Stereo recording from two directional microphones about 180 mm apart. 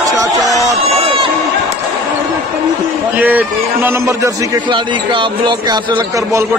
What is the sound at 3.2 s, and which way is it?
A man's voice, 10° right (ahead or behind).